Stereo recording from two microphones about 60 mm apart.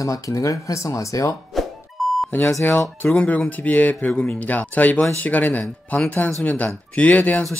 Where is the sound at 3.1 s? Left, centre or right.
Centre.